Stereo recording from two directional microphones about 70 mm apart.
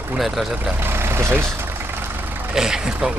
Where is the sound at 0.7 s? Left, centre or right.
Right.